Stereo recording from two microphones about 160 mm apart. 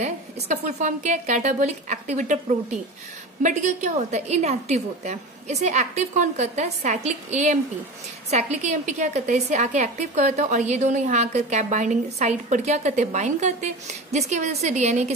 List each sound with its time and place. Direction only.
0.0 s a woman's voice: 45° right (ahead or behind)